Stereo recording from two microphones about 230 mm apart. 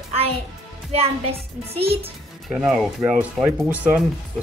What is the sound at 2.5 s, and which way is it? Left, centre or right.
Speech, centre.